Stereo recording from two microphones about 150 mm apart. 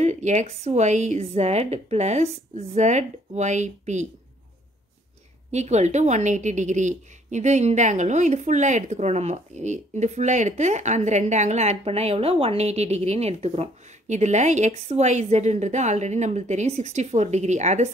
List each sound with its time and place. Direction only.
0.0 s a woman's voice: 50° right (ahead or behind)
5.5 s a woman's voice: 50° right (ahead or behind)